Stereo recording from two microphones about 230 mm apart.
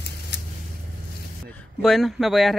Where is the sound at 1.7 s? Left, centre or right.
Centre.